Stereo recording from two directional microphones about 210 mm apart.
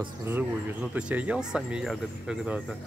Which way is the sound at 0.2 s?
10° right (ahead or behind).